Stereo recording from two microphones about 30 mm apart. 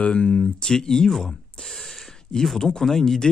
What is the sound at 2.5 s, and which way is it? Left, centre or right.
Speech, left.